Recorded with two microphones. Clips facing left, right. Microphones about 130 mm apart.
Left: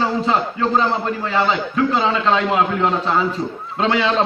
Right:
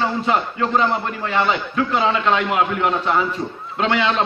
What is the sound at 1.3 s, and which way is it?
A man's voice, 30° left (ahead or behind).